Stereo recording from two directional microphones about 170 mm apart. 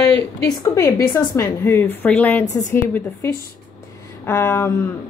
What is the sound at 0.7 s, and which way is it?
A woman's voice, 15° left (ahead or behind).